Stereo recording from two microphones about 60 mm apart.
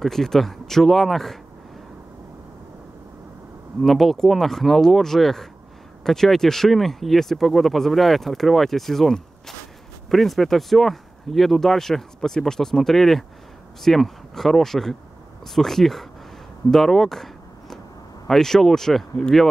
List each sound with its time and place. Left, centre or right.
0.0 s speech: centre
3.8 s speech: centre